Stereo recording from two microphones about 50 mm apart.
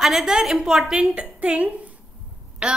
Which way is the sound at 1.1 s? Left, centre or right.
Right.